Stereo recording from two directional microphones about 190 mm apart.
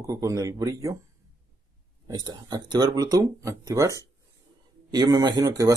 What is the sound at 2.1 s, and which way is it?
Speech, 20° right (ahead or behind).